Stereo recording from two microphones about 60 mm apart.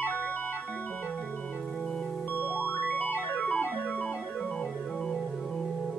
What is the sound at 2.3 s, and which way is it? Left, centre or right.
Music, left.